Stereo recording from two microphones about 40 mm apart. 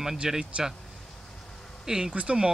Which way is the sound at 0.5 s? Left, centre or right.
Right.